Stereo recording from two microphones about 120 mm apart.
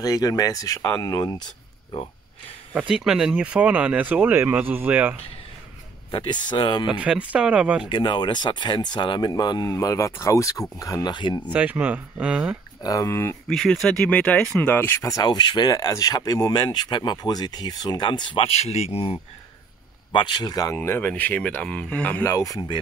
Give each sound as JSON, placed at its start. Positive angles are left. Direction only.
{"t": 0.0, "sound": "speech", "side_deg": 30}
{"t": 2.7, "sound": "speech", "side_deg": -5}
{"t": 6.1, "sound": "speech", "side_deg": 40}
{"t": 6.9, "sound": "speech", "side_deg": -10}
{"t": 7.8, "sound": "speech", "side_deg": 40}
{"t": 11.1, "sound": "speech", "side_deg": 40}
{"t": 11.5, "sound": "speech", "side_deg": -10}
{"t": 12.8, "sound": "speech", "side_deg": 30}
{"t": 13.5, "sound": "speech", "side_deg": 5}
{"t": 20.1, "sound": "speech", "side_deg": 40}
{"t": 20.7, "sound": "speech", "side_deg": 15}
{"t": 22.2, "sound": "speech", "side_deg": 25}